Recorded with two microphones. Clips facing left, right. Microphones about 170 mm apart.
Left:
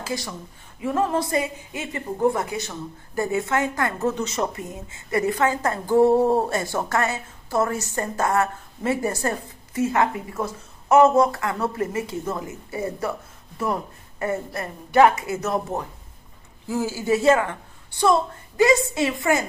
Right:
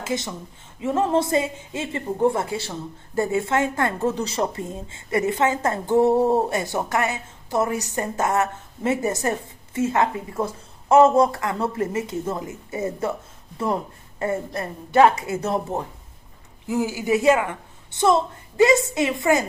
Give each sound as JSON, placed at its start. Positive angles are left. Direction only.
{"t": 0.0, "sound": "a woman's voice", "side_deg": -20}
{"t": 14.2, "sound": "a woman's voice", "side_deg": -25}
{"t": 16.6, "sound": "a woman's voice", "side_deg": -15}